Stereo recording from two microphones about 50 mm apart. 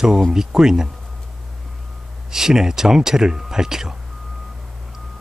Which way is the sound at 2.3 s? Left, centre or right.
Centre.